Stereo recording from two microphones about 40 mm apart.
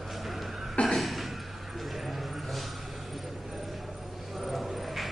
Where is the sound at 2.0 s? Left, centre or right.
Centre.